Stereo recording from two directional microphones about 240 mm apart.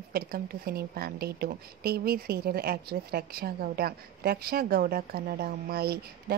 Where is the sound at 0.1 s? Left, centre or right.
Right.